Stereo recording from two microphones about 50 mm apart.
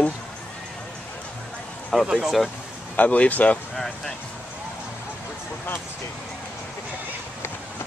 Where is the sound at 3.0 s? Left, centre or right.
Left.